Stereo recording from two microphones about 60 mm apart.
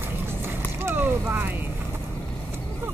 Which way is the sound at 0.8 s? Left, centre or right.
Right.